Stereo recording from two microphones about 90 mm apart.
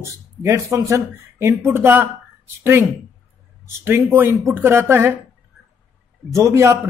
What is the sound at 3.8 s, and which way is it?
A man's voice, 25° right (ahead or behind).